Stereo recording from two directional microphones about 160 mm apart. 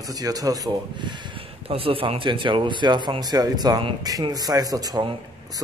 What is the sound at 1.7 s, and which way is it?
Speech, 35° right (ahead or behind).